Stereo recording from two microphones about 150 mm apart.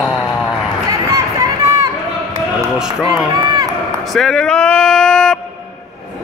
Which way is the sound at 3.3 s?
25° right (ahead or behind).